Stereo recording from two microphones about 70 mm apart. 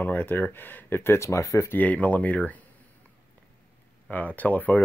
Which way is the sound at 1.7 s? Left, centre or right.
Left.